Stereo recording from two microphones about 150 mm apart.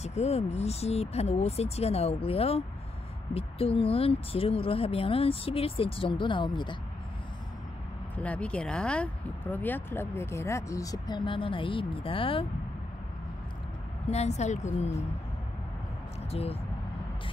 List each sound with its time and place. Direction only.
0.0 s speech: 45° left (ahead or behind)
8.2 s speech: 10° left (ahead or behind); by 12.4 s 35° left (ahead or behind)
14.0 s speech: 45° left (ahead or behind)
16.3 s speech: 40° left (ahead or behind)